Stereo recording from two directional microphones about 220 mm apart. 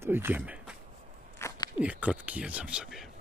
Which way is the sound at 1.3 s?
15° left (ahead or behind).